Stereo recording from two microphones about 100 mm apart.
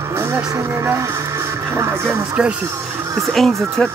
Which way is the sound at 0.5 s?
25° right (ahead or behind).